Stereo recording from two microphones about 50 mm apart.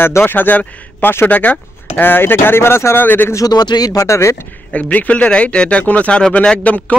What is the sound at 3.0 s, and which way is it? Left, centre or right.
Speech, left.